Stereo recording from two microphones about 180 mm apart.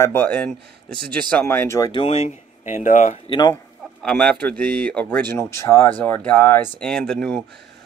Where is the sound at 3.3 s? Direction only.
20° left (ahead or behind).